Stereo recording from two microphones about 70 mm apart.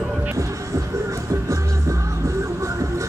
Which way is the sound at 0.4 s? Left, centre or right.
Right.